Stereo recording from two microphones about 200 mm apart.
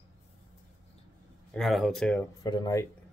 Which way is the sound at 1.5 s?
Centre (ahead or behind).